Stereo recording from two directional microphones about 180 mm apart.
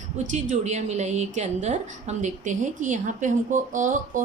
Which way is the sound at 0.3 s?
40° right (ahead or behind).